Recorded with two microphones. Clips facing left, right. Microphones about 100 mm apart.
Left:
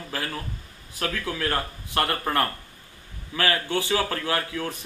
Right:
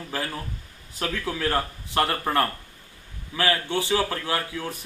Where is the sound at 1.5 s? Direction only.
10° right (ahead or behind).